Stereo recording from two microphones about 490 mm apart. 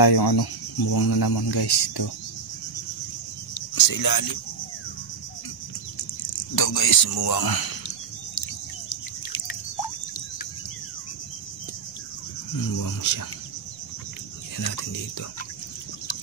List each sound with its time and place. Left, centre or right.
0.0 s speech: left
3.7 s speech: left
6.5 s speech: left
8.8 s a sound: left
12.7 s speech: left
14.6 s speech: left